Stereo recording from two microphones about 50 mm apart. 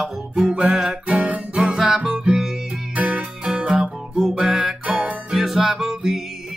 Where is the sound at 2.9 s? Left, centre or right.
Right.